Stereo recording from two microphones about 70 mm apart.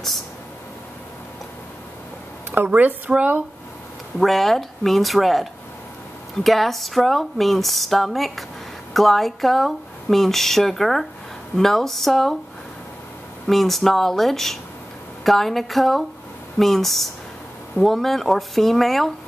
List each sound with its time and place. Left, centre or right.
2.5 s speech: right
4.2 s speech: centre
13.5 s speech: centre